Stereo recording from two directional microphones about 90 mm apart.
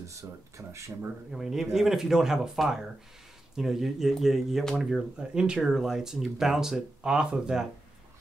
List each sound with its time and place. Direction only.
0.0 s speech: 35° right (ahead or behind)
1.3 s speech: 5° right (ahead or behind)